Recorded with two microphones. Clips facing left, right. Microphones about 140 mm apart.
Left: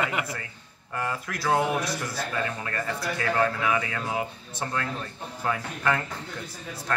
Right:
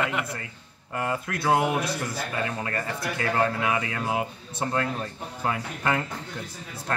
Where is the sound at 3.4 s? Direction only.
20° right (ahead or behind).